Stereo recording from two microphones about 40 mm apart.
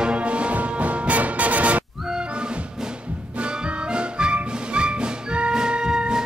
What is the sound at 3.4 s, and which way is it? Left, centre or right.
Music, right.